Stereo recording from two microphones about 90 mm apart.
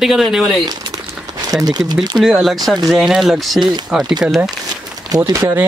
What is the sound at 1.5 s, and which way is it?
Speech, 45° right (ahead or behind).